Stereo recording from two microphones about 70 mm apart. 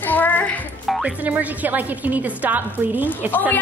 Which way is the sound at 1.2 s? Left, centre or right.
Right.